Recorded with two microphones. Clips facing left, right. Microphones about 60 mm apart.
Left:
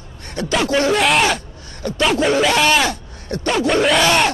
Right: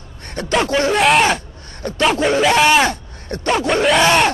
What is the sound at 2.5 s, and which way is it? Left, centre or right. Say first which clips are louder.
Speech: right 3 dB; centre.